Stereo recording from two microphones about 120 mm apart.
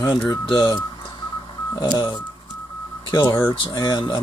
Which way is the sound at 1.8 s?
40° left (ahead or behind).